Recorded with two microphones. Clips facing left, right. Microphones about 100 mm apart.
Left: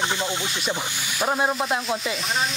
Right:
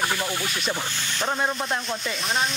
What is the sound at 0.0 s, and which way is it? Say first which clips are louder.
Speech: left 1 dB; 20° left (ahead or behind).